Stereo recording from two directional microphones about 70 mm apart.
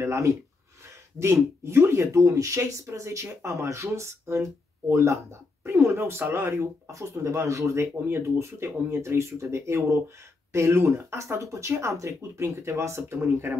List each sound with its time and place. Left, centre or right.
0.0 s speech: right
6.9 s speech: right